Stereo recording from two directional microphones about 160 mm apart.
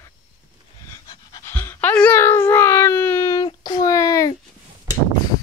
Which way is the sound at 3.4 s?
25° left (ahead or behind).